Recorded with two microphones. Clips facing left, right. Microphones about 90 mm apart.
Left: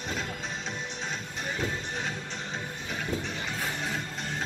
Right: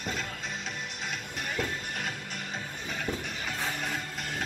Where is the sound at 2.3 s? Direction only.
25° left (ahead or behind).